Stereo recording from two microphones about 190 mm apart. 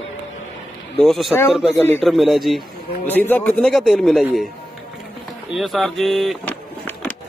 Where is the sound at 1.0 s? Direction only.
Centre (ahead or behind).